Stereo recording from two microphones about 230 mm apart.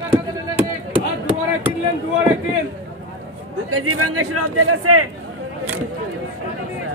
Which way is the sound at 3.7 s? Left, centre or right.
Right.